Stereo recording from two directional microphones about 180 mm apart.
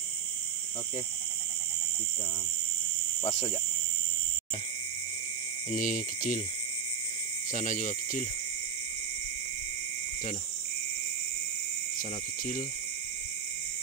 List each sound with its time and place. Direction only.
5.7 s speech: 50° left (ahead or behind)
7.5 s speech: 45° left (ahead or behind)
12.0 s speech: 50° left (ahead or behind)